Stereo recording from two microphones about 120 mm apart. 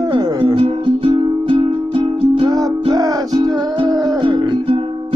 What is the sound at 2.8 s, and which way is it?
Music, 35° right (ahead or behind).